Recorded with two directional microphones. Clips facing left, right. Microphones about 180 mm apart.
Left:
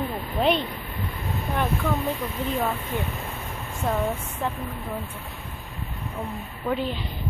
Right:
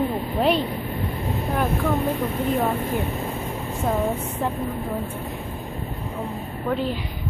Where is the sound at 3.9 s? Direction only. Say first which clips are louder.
Right 2 dB; 15° right (ahead or behind).